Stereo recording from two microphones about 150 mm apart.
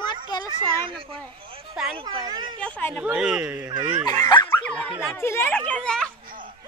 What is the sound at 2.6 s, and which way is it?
Speech, 10° left (ahead or behind).